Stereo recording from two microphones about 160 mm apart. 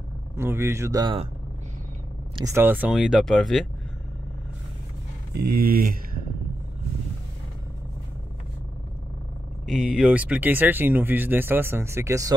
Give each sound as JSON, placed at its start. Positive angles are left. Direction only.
{"t": 0.4, "sound": "speech", "side_deg": -15}
{"t": 2.4, "sound": "speech", "side_deg": -15}
{"t": 5.5, "sound": "speech", "side_deg": -70}
{"t": 9.9, "sound": "speech", "side_deg": -5}